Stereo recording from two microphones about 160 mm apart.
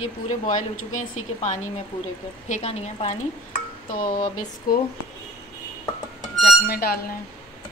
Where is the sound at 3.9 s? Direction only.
60° left (ahead or behind).